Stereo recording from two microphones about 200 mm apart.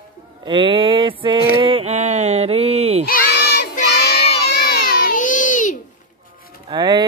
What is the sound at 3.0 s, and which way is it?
Child singing, 50° left (ahead or behind).